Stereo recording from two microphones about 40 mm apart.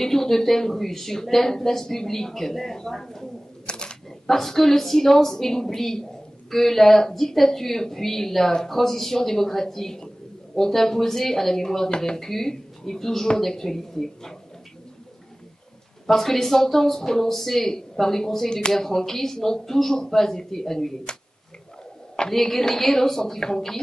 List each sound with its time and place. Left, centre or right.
0.0 s speech: centre
3.6 s camera: left
4.3 s speech: centre
16.1 s speech: centre
22.3 s speech: centre